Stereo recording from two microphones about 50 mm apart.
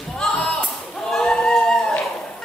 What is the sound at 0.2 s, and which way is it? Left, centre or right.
Music, centre.